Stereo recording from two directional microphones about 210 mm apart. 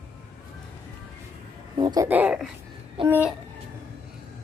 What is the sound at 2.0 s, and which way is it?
Speech, 10° right (ahead or behind).